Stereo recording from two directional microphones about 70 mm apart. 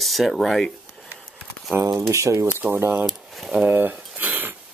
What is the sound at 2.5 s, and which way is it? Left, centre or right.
Speech, right.